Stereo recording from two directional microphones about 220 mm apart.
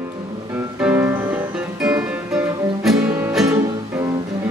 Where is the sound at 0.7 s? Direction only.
5° right (ahead or behind).